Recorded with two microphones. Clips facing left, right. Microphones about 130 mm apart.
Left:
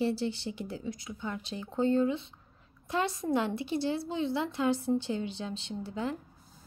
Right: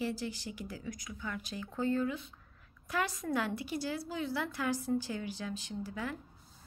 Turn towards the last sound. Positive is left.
turn(degrees=25)  # may be behind; listen again after turning